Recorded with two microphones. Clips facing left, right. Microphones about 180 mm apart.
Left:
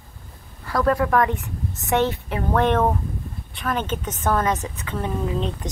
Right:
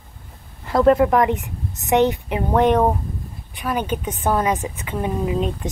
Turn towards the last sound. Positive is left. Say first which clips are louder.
# right 3 dB
turn(degrees=-15)  # may be behind; listen again after turning